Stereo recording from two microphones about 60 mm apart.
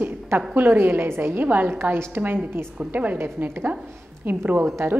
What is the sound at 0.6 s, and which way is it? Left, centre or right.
Speech, right.